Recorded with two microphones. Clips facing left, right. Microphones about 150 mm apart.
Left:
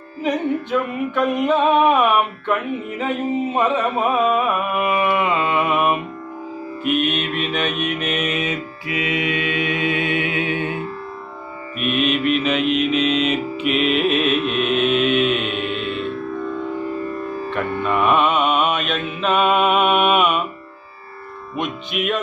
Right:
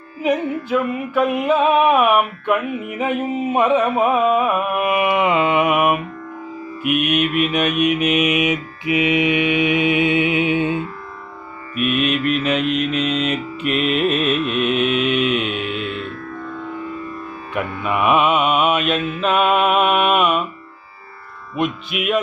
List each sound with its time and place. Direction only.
0.2 s music: 5° right (ahead or behind)
4.5 s mantra: centre (ahead or behind)
4.8 s music: 15° right (ahead or behind)
6.8 s mantra: 10° right (ahead or behind)
11.7 s mantra: centre (ahead or behind)
13.7 s music: centre (ahead or behind)
15.1 s mantra: centre (ahead or behind)
17.8 s mantra: 5° right (ahead or behind)
21.5 s mantra: 5° right (ahead or behind)